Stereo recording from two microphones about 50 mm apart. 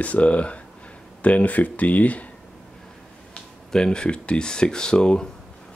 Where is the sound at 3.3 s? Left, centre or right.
Centre.